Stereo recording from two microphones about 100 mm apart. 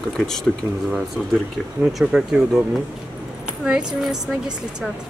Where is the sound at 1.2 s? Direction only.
5° right (ahead or behind).